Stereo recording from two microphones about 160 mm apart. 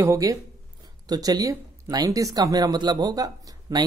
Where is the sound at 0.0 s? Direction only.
20° right (ahead or behind).